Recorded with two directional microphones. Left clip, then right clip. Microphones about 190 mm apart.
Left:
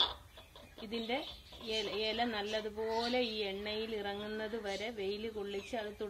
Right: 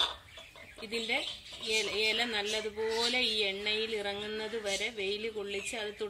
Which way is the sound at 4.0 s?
10° left (ahead or behind).